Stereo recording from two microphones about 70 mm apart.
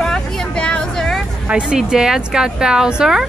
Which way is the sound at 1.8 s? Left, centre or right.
Centre.